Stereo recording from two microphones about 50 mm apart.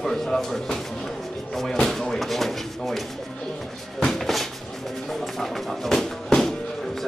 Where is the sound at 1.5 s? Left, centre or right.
Centre.